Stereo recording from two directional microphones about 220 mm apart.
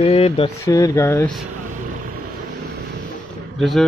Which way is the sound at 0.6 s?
15° left (ahead or behind).